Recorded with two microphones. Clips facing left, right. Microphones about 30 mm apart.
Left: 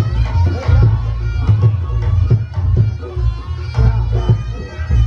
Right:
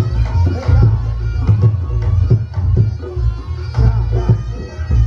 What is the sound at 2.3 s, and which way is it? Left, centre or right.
Music, centre.